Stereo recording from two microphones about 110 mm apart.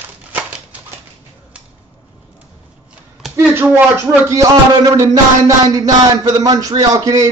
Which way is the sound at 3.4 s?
20° right (ahead or behind).